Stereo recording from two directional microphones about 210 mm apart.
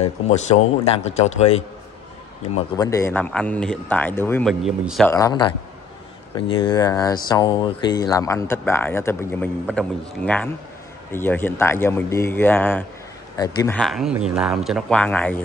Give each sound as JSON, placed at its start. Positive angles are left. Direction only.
{"t": 0.3, "sound": "speech", "side_deg": 30}
{"t": 2.8, "sound": "speech", "side_deg": 15}
{"t": 5.1, "sound": "speech", "side_deg": 20}
{"t": 13.7, "sound": "speech", "side_deg": 0}